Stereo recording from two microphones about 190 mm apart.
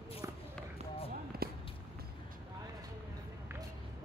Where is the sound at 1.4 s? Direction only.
55° right (ahead or behind).